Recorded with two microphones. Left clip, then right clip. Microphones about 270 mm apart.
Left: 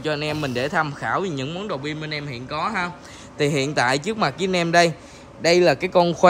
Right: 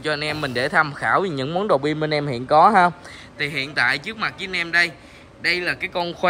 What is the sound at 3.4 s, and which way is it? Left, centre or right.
A man's voice, centre.